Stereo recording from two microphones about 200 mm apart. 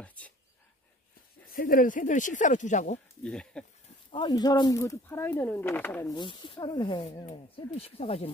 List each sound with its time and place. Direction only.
0.0 s speech: 5° left (ahead or behind)
1.5 s speech: 45° left (ahead or behind)
3.3 s speech: 5° left (ahead or behind)
4.1 s speech: 20° left (ahead or behind)
6.1 s speech: 25° left (ahead or behind)